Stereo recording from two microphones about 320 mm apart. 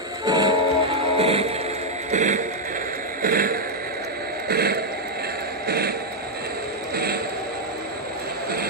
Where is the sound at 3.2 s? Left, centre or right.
Right.